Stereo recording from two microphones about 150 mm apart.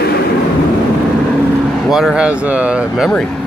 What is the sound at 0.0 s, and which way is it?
Vehicle, 90° left.